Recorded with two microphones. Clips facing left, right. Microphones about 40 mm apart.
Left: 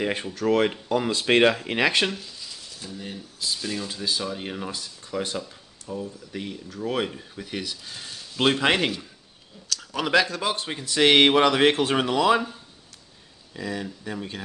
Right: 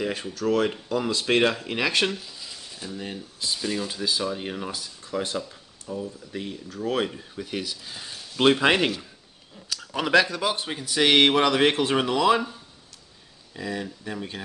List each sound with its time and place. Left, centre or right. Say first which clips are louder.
0.0 s speech: left 1 dB; left
0.7 s speech: left 2 dB; centre
2.0 s a sound: right 1 dB; centre
3.0 s speech: even; right
3.5 s speech: right 4 dB; centre
9.8 s a sound: right 1 dB; centre
10.7 s speech: left 3 dB; centre